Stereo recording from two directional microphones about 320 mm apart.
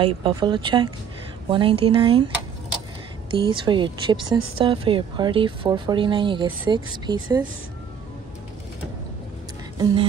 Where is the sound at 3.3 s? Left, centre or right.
Centre.